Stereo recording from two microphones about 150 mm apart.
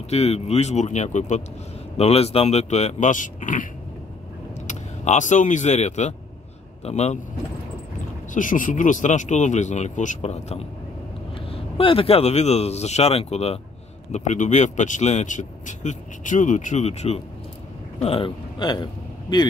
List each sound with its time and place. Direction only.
0.1 s speech: 45° left (ahead or behind)
8.3 s speech: 60° left (ahead or behind)
11.3 s a man's voice: 35° left (ahead or behind)
14.1 s a man's voice: 55° left (ahead or behind); by 18.9 s 30° left (ahead or behind)